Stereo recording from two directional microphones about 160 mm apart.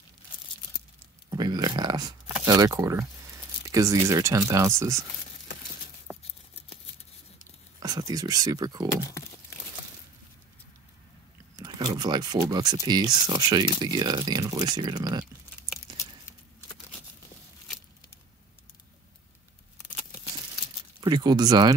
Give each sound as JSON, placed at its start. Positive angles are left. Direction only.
{"t": 1.3, "sound": "speech", "side_deg": -25}
{"t": 6.1, "sound": "a sound", "side_deg": -5}
{"t": 7.8, "sound": "speech", "side_deg": -25}
{"t": 11.5, "sound": "speech", "side_deg": -25}
{"t": 21.0, "sound": "speech", "side_deg": -25}